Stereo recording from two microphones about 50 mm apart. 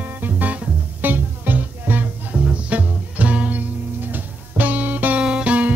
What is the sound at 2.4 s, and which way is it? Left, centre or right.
Music, right.